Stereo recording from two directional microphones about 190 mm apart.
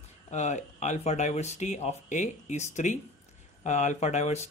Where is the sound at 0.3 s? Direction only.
40° left (ahead or behind).